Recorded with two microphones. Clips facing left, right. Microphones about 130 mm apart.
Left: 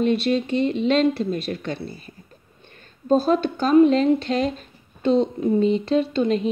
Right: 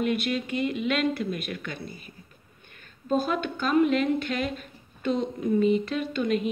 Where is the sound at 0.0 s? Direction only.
30° left (ahead or behind).